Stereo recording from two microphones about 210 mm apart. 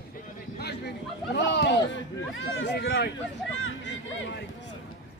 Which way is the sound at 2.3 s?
65° left (ahead or behind).